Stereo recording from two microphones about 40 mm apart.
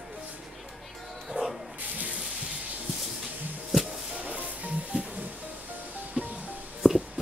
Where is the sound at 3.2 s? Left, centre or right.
Centre.